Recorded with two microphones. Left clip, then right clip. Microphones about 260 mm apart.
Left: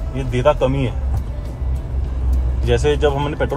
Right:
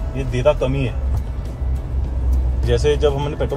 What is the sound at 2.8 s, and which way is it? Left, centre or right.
Speech, left.